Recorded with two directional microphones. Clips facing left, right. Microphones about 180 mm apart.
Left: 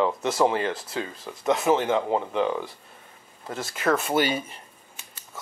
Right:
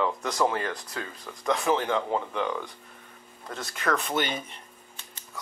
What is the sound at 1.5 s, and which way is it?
Speech, 20° left (ahead or behind).